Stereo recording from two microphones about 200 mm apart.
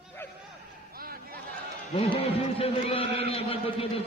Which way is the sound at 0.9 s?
50° right (ahead or behind).